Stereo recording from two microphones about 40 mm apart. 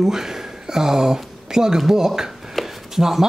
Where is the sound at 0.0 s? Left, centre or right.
Centre.